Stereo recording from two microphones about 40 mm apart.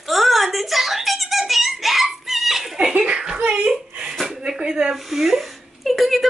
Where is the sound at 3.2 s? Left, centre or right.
Centre.